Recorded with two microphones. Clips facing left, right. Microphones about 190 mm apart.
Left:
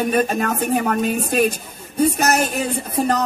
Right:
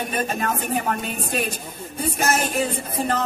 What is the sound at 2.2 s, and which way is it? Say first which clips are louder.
Speech: left 4 dB; 40° left (ahead or behind).